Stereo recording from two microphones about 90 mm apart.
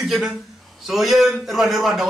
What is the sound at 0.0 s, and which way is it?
A man's voice, 5° right (ahead or behind).